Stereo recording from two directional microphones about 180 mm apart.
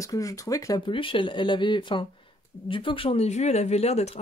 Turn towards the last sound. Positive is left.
turn(degrees=35)  # may be behind; listen again after turning